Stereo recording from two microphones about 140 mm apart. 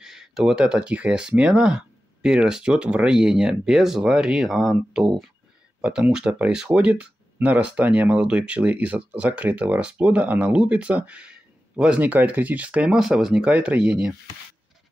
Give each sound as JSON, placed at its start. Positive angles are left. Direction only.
{"t": 0.0, "sound": "speech", "side_deg": -5}